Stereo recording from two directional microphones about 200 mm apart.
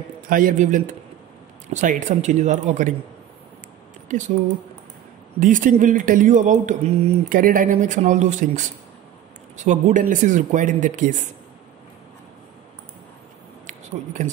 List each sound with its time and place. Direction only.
0.3 s speech: 45° right (ahead or behind)
5.4 s speech: 40° right (ahead or behind)
13.7 s a sound: 40° right (ahead or behind)